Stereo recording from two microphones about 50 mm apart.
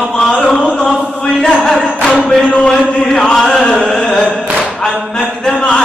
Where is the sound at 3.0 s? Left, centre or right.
Centre.